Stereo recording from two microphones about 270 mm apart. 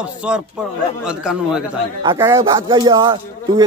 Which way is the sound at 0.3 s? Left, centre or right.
Centre.